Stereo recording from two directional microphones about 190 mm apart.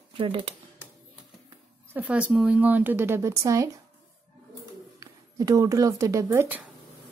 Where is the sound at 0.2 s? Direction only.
25° right (ahead or behind).